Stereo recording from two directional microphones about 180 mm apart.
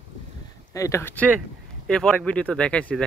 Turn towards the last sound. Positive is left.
turn(degrees=5)  # may be behind; listen again after turning